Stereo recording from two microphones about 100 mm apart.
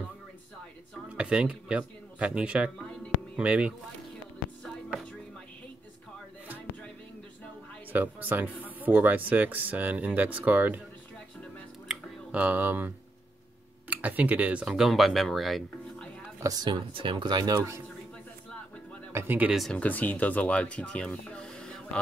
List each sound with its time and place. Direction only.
1.0 s speech: 10° right (ahead or behind)
4.6 s chopping: 5° left (ahead or behind)
7.9 s speech: 20° right (ahead or behind)
11.9 s a sound: 15° right (ahead or behind)
13.8 s speech: 15° right (ahead or behind); by 15.6 s centre (ahead or behind)
16.3 s a woman's voice: 35° right (ahead or behind)
16.6 s speech: 55° right (ahead or behind)
17.6 s a man's voice: 30° right (ahead or behind)
19.1 s speech: 20° right (ahead or behind)
19.7 s speech: 15° left (ahead or behind)